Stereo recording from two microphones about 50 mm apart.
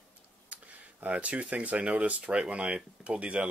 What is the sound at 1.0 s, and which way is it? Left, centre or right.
Speech, right.